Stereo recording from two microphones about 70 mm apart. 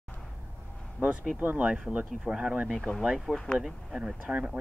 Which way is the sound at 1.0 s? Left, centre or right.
Centre.